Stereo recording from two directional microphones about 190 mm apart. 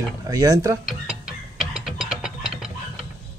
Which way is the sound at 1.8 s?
Centre (ahead or behind).